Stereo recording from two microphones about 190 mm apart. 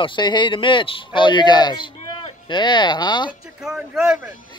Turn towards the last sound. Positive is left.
turn(degrees=0)  # may be behind; listen again after turning